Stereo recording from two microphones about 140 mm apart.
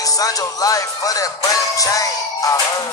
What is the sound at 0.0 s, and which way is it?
Speech, 25° left (ahead or behind).